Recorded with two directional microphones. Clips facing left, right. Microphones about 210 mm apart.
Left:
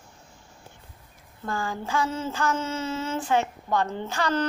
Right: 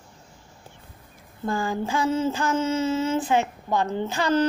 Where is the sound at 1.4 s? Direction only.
20° right (ahead or behind).